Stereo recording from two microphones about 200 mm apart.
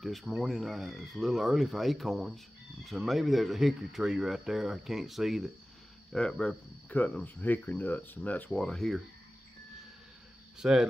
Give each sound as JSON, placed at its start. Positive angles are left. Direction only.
{"t": 0.0, "sound": "speech", "side_deg": 0}
{"t": 10.6, "sound": "speech", "side_deg": -5}